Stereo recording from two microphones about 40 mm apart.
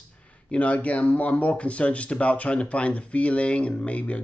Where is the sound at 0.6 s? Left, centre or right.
Left.